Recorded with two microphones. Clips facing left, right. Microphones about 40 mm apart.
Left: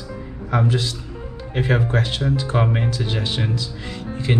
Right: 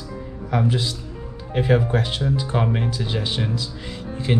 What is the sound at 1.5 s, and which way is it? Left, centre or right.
Speech, centre.